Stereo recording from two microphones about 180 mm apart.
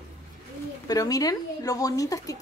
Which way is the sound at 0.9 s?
20° left (ahead or behind).